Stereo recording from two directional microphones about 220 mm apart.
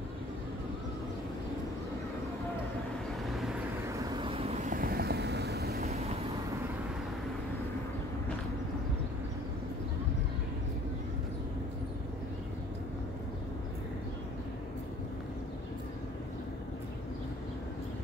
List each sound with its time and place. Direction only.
3.3 s vehicle: centre (ahead or behind)
4.0 s vehicle: 25° right (ahead or behind)
4.6 s vehicle: 40° right (ahead or behind)